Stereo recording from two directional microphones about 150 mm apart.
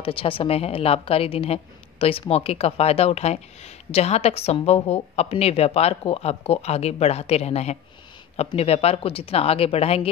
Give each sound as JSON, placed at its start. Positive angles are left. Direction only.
{"t": 0.0, "sound": "a woman's voice", "side_deg": 35}